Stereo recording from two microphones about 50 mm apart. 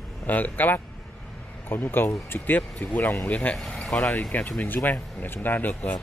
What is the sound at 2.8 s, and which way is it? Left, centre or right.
Speech, left.